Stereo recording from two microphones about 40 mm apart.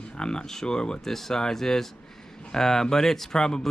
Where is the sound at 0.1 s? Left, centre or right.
Left.